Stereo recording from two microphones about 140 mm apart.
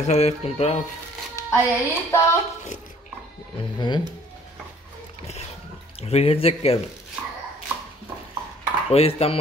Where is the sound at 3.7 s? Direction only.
30° left (ahead or behind).